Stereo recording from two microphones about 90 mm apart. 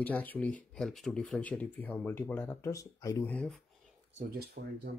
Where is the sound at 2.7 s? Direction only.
35° left (ahead or behind).